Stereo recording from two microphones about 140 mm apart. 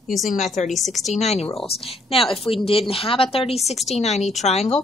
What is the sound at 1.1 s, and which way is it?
A woman's voice, 50° left (ahead or behind).